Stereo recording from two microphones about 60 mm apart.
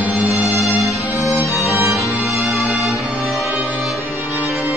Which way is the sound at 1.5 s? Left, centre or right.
Left.